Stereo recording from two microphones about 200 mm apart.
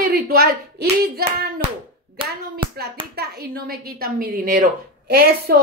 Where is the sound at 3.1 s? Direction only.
50° right (ahead or behind).